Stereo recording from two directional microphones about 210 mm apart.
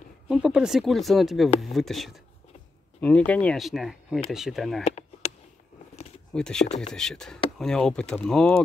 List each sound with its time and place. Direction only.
0.3 s speech: 5° right (ahead or behind)
4.8 s a sound: 30° left (ahead or behind)
6.3 s speech: 5° left (ahead or behind)